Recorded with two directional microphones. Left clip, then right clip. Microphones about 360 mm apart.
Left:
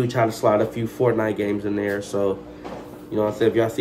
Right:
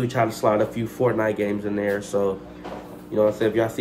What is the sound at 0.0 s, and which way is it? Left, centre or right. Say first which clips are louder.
Speech: left 2 dB; centre.